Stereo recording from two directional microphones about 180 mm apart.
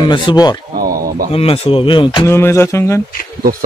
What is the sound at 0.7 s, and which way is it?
Speech, 55° right (ahead or behind).